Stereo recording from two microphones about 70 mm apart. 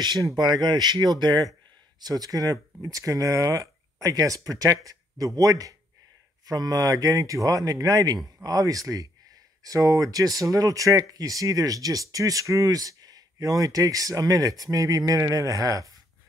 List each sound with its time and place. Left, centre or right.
0.4 s speech: right